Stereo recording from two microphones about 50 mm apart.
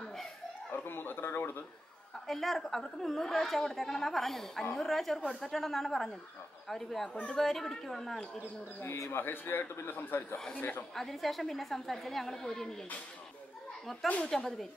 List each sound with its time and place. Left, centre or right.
0.7 s speech: left
2.2 s a woman's voice: centre
9.1 s a man's voice: left
11.0 s a woman's voice: centre
14.2 s speech: centre